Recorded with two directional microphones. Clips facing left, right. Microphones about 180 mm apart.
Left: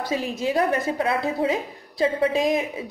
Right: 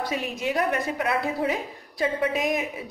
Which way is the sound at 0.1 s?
30° left (ahead or behind).